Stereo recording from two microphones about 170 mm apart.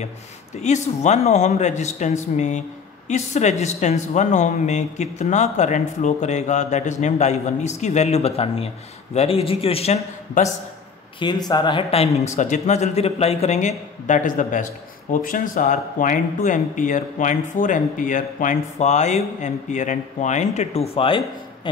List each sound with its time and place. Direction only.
0.6 s speech: 40° left (ahead or behind)
10.4 s speech: 50° left (ahead or behind)
11.1 s speech: 25° left (ahead or behind)